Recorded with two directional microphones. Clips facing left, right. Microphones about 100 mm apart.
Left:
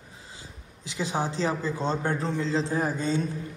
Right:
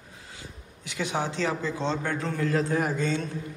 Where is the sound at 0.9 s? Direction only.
35° left (ahead or behind).